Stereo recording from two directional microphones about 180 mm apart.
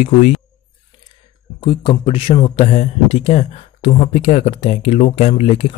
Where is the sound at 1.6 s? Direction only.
30° left (ahead or behind).